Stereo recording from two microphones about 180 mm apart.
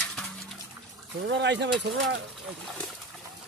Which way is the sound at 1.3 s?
75° right (ahead or behind).